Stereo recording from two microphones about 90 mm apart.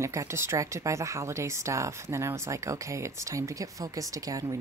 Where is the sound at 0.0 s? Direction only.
35° right (ahead or behind).